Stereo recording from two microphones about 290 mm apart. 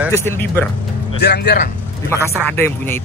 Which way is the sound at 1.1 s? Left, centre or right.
Left.